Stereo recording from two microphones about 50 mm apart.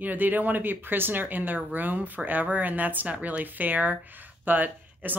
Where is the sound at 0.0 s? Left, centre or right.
Right.